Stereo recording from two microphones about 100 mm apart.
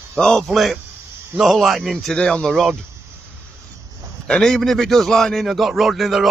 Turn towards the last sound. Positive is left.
turn(degrees=0)  # may be behind; listen again after turning